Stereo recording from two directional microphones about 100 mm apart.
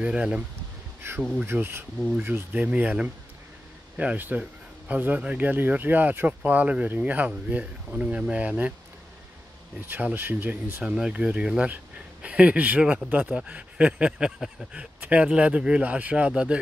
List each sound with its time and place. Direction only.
0.0 s speech: 10° right (ahead or behind)
1.0 s speech: 25° right (ahead or behind)
9.8 s speech: 20° right (ahead or behind)